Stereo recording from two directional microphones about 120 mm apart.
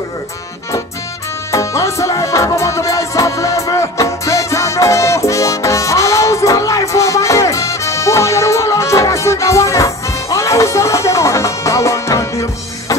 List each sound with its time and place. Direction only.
1.5 s music: 25° left (ahead or behind)